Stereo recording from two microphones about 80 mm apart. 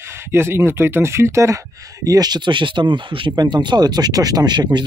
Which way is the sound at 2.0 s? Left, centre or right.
Right.